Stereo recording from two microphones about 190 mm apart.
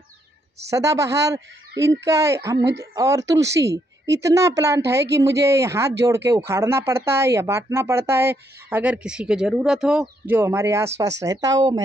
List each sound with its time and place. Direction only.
0.7 s speech: 15° right (ahead or behind)